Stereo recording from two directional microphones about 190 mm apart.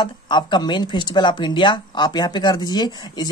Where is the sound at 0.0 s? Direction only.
25° left (ahead or behind).